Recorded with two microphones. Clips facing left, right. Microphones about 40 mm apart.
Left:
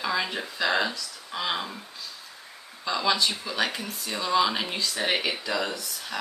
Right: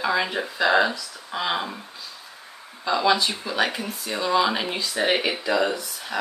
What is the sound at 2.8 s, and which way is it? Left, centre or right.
Speech, centre.